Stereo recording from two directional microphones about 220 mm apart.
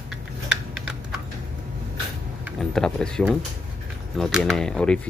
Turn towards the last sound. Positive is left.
turn(degrees=5)  # may be behind; listen again after turning